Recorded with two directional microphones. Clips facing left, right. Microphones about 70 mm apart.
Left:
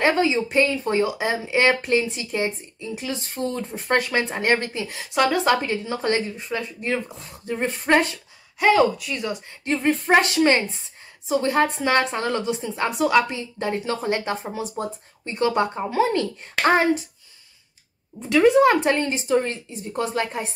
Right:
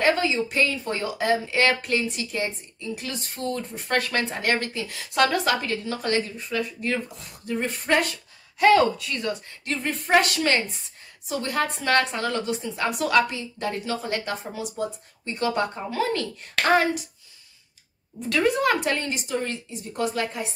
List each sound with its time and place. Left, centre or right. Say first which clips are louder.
0.0 s speech: left 2 dB; left
5.1 s speech: left 1 dB; centre
5.4 s speech: left 4 dB; left
8.5 s speech: even; centre
9.5 s speech: left 7 dB; left
18.3 s speech: left 6 dB; centre